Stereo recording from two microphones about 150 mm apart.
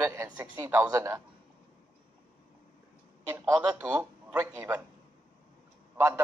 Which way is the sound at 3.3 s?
20° right (ahead or behind).